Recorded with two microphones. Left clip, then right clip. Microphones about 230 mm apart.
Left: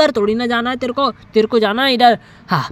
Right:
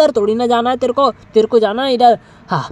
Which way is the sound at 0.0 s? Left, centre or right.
Left.